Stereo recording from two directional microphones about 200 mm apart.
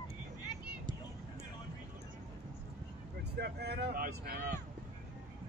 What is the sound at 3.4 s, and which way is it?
Speech, 55° right (ahead or behind).